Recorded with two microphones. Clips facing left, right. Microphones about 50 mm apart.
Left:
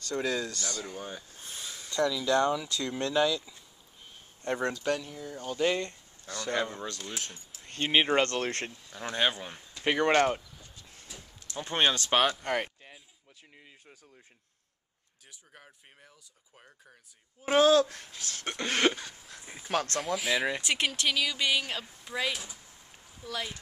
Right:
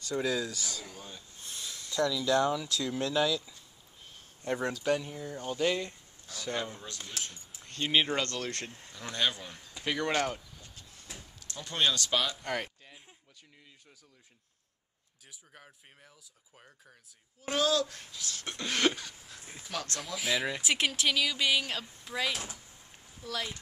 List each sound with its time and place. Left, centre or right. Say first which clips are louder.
0.0 s speech: even; centre
1.4 s a sound: left 1 dB; centre
1.9 s speech: left 1 dB; centre
4.9 s speech: right 2 dB; centre
7.6 s a sound: left 2 dB; centre
7.9 s speech: left 4 dB; left
8.9 s speech: left 3 dB; left
11.5 s speech: left 3 dB; left
12.4 s a sound: left 4 dB; centre
15.5 s speech: left 1 dB; centre
17.4 s speech: left 7 dB; left
18.8 s speech: left 2 dB; centre
19.6 s speech: left 8 dB; left
20.2 s speech: even; centre